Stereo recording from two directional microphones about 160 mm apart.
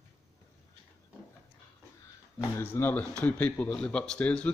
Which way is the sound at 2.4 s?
15° left (ahead or behind).